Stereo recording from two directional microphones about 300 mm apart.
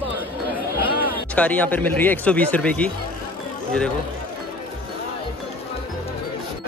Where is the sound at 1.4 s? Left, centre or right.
Centre.